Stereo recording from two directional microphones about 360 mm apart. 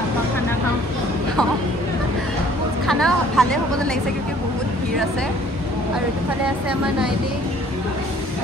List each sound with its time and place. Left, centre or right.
2.9 s speech: centre